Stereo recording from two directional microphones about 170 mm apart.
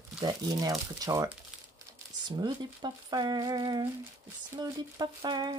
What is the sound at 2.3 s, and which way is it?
Speech, 25° right (ahead or behind).